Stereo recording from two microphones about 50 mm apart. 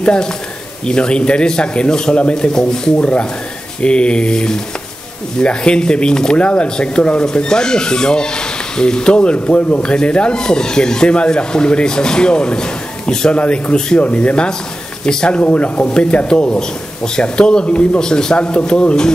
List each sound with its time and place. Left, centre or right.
0.0 s a man's voice: centre
15.4 s a man's voice: left